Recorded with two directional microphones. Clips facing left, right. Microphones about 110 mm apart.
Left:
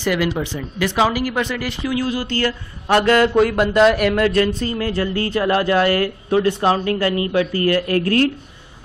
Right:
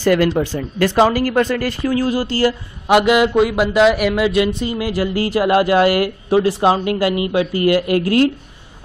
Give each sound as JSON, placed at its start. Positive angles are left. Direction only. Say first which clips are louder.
{"t": 0.0, "sound": "speech", "louder": "right 5 dB", "side_deg": -45}
{"t": 2.9, "sound": "speech", "louder": "right 2 dB", "side_deg": -10}